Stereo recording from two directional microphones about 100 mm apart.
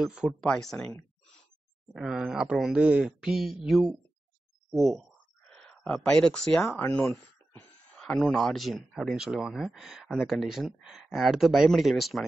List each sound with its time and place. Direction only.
0.0 s speech: 5° right (ahead or behind)
0.3 s speech: 5° left (ahead or behind)
2.0 s speech: 10° right (ahead or behind)
6.7 s speech: 20° left (ahead or behind); by 12.3 s centre (ahead or behind)